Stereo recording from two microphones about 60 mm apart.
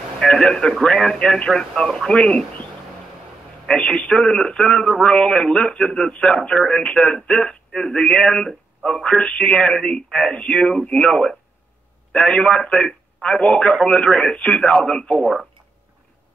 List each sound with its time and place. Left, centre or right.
0.2 s a man's voice: centre
3.6 s a man's voice: centre